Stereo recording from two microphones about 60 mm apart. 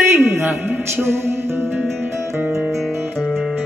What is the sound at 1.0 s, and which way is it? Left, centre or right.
Music, right.